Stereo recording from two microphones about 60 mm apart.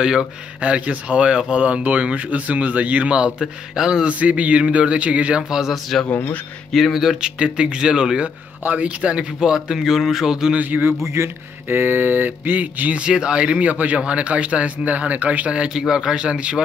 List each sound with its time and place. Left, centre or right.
0.0 s a man's voice: centre
5.5 s a man's voice: centre
8.6 s a man's voice: right; by 10.5 s centre
10.5 s mantra: right
13.0 s a man's voice: centre